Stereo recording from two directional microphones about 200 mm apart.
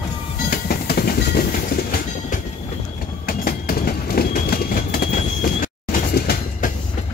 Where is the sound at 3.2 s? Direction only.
50° left (ahead or behind).